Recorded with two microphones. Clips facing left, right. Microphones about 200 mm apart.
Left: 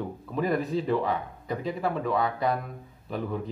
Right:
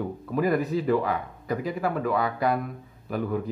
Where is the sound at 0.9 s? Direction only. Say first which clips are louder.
Right 2 dB; 25° left (ahead or behind).